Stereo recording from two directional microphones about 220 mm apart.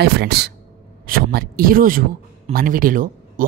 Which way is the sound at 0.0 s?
45° right (ahead or behind).